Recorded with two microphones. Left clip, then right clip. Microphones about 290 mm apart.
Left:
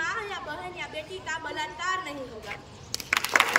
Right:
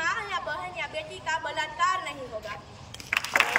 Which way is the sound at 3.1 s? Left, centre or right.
Centre.